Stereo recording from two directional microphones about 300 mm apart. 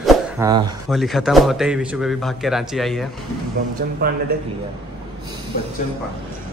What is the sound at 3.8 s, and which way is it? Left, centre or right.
Speech, right.